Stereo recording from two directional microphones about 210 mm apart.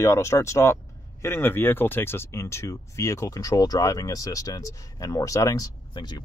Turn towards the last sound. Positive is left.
turn(degrees=20)  # may be behind; listen again after turning